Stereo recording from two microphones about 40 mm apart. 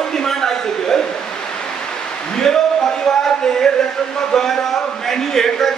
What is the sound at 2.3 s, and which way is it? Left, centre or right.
Speech, centre.